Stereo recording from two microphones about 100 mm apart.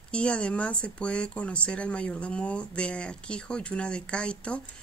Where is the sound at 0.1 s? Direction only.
10° left (ahead or behind).